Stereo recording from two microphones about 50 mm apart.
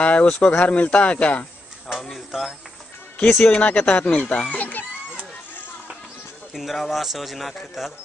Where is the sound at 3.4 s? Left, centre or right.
Left.